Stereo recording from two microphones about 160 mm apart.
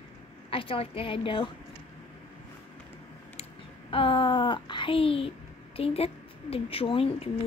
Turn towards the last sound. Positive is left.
turn(degrees=35)  # may be behind; listen again after turning